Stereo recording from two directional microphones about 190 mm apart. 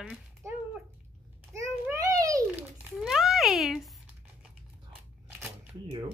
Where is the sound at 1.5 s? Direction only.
15° right (ahead or behind).